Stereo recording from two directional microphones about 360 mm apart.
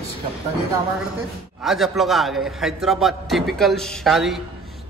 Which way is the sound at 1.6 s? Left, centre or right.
Centre.